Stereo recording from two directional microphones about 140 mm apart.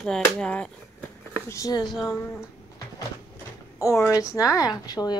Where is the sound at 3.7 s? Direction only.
20° left (ahead or behind).